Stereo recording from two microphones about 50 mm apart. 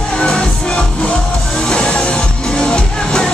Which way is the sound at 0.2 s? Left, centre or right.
Centre.